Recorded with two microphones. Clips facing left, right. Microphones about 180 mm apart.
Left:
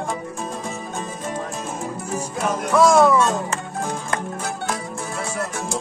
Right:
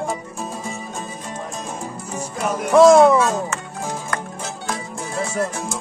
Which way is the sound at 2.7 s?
25° right (ahead or behind).